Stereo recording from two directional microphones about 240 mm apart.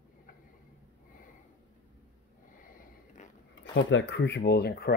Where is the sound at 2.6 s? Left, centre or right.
Left.